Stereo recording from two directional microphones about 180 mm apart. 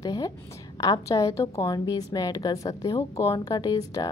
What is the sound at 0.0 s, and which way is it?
A woman's voice, 20° left (ahead or behind).